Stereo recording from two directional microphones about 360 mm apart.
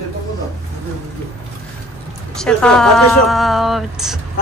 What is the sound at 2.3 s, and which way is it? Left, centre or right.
Speech, centre.